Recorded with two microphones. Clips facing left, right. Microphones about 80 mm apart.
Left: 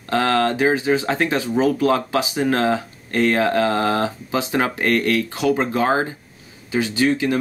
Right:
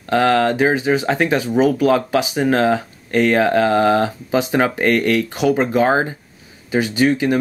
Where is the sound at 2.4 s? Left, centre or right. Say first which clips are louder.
Right 3 dB; right.